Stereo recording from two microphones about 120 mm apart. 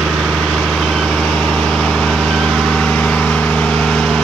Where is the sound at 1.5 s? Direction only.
5° left (ahead or behind).